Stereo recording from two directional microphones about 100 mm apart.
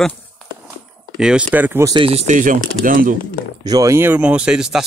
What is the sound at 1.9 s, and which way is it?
Speech, 70° right (ahead or behind).